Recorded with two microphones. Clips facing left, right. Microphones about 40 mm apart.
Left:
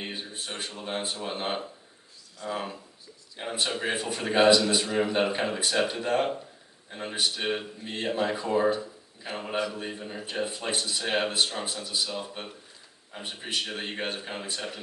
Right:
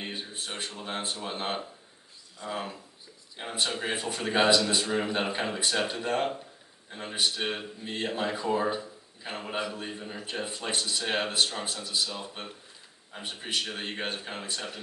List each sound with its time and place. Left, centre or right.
0.0 s speech: centre
8.6 s a sound: centre
9.7 s speech: centre